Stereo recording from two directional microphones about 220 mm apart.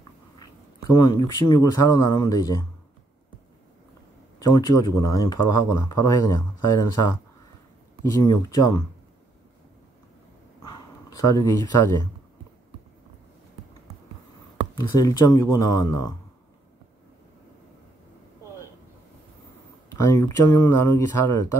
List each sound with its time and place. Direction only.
0.4 s speech: 15° left (ahead or behind)
4.4 s speech: 15° left (ahead or behind)
10.6 s speech: 15° left (ahead or behind)
14.8 s speech: 15° left (ahead or behind)
19.9 s speech: 15° left (ahead or behind)